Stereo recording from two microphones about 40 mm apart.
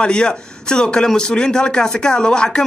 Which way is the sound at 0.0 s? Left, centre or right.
Left.